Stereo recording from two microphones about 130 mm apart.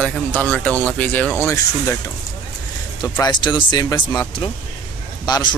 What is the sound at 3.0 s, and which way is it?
Speech, 30° left (ahead or behind).